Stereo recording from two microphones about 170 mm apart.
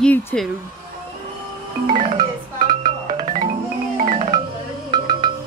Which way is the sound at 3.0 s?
45° right (ahead or behind).